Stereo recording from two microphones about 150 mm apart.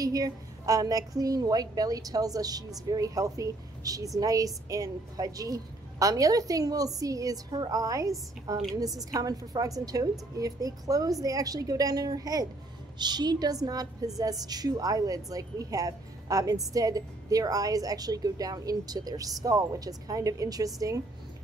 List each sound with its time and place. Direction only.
0.0 s a woman's voice: 25° right (ahead or behind)